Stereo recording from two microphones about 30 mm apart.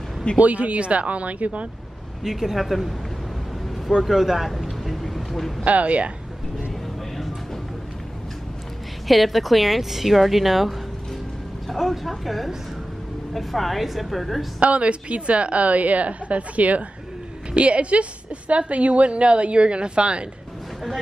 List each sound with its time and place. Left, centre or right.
0.4 s a woman's voice: right
2.2 s speech: centre
4.0 s speech: centre
5.7 s a woman's voice: right
9.0 s speech: centre
14.6 s a woman's voice: right
17.5 s a woman's voice: right